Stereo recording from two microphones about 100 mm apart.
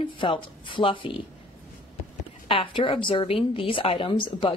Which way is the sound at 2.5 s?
60° left (ahead or behind).